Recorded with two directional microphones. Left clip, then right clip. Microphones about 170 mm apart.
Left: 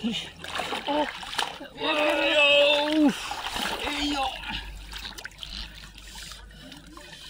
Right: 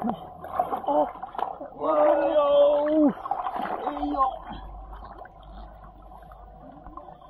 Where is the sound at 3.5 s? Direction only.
15° left (ahead or behind).